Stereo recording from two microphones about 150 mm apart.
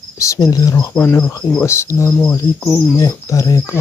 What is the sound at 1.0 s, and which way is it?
Cricket, 15° left (ahead or behind).